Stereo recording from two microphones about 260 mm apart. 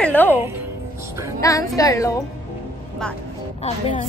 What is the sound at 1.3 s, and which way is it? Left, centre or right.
Speech, centre.